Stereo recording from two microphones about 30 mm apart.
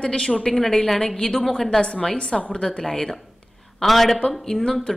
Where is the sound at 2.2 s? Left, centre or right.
Left.